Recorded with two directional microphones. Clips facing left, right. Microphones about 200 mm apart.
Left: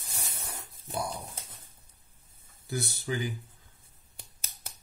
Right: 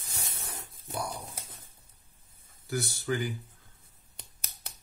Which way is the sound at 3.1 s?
15° left (ahead or behind).